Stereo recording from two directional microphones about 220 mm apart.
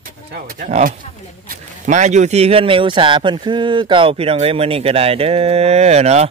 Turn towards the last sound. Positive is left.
turn(degrees=-30)  # may be behind; listen again after turning